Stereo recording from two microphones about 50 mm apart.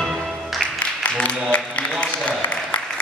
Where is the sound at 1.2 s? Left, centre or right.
Left.